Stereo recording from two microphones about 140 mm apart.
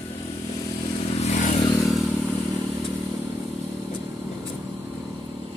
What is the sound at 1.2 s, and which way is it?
Vehicle, 60° left (ahead or behind).